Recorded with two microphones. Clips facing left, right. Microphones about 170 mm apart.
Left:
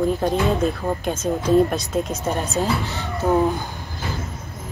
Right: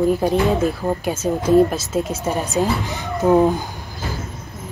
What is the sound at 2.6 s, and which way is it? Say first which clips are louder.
Speech: right 2 dB; 15° right (ahead or behind).